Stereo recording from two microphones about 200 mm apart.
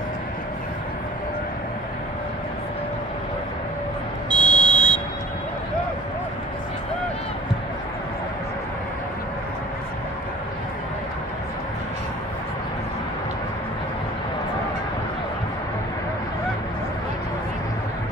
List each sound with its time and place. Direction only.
4.3 s fire alarm: 20° right (ahead or behind)